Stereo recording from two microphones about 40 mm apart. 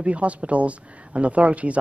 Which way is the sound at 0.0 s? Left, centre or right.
Right.